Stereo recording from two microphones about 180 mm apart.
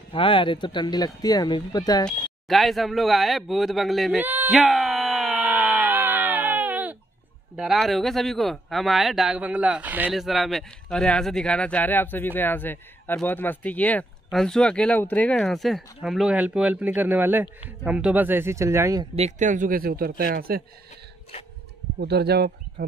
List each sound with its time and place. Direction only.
0.1 s speech: 30° left (ahead or behind)
2.0 s a man's voice: centre (ahead or behind)
4.2 s a sound: 10° right (ahead or behind)
5.3 s a sound: 10° right (ahead or behind)
7.5 s a man's voice: centre (ahead or behind)
19.1 s a man's voice: 40° right (ahead or behind); by 20.6 s 55° right (ahead or behind)
22.0 s speech: 65° right (ahead or behind)